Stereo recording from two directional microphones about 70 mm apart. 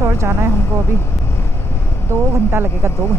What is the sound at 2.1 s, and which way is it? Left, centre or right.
Speech, right.